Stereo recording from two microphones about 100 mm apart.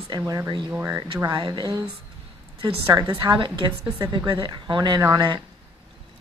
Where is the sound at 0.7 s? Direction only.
25° right (ahead or behind).